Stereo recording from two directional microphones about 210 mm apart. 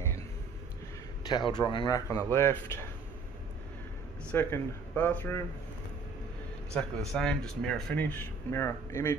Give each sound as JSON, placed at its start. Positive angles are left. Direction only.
{"t": 1.2, "sound": "speech", "side_deg": 20}
{"t": 4.3, "sound": "speech", "side_deg": 10}
{"t": 6.7, "sound": "speech", "side_deg": 0}